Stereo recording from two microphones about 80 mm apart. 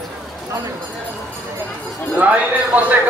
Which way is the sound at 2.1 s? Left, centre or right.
Centre.